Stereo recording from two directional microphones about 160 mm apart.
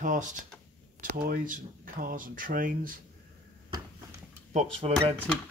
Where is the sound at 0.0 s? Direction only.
55° right (ahead or behind).